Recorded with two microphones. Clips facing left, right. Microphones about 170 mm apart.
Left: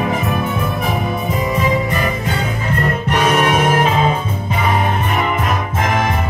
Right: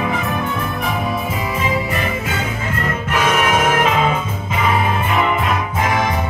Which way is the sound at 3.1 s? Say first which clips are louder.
Left 2 dB; 35° left (ahead or behind).